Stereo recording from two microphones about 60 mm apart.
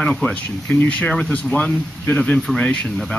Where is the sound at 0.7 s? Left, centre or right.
Left.